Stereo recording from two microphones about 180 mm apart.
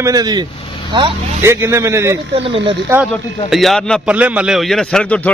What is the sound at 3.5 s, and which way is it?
A man's voice, centre (ahead or behind).